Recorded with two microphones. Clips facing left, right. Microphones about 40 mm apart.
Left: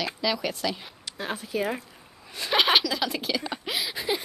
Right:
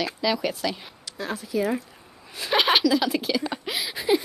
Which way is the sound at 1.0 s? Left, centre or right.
Left.